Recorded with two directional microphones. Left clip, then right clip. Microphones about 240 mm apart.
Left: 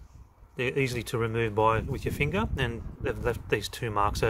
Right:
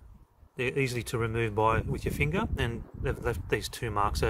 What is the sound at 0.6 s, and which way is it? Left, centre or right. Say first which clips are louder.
Speech: left 1 dB; centre.